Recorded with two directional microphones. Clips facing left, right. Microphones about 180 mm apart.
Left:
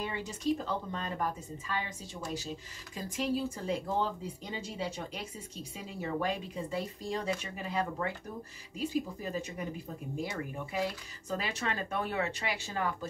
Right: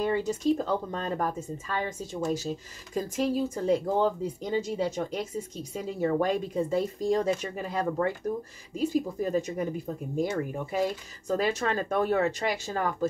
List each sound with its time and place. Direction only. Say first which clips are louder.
0.0 s speech: right 8 dB; 45° right (ahead or behind)